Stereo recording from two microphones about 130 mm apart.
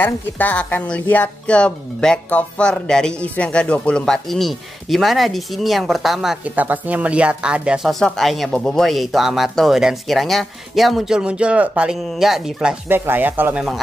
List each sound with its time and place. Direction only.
0.0 s a woman's voice: 10° left (ahead or behind)
6.5 s speech: 10° right (ahead or behind)
12.8 s speech: 15° right (ahead or behind)